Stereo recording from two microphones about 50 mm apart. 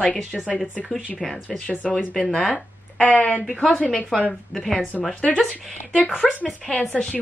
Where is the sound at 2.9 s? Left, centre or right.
Left.